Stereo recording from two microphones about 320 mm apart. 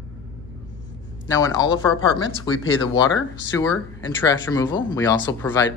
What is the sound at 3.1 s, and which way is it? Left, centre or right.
Speech, left.